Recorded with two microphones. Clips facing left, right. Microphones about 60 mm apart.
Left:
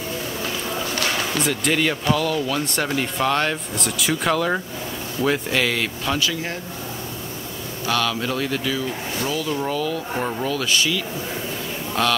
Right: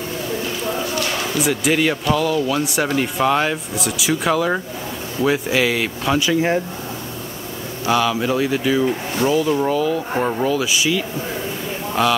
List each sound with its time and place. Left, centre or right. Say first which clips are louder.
1.4 s speech: right 4 dB; centre
6.1 s speech: right 8 dB; right
7.8 s speech: right 5 dB; centre